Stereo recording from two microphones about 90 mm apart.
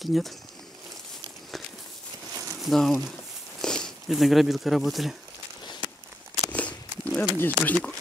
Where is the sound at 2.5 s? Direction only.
Centre (ahead or behind).